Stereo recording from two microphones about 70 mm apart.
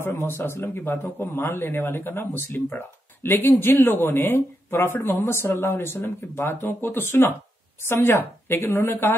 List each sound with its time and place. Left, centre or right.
0.1 s speech: left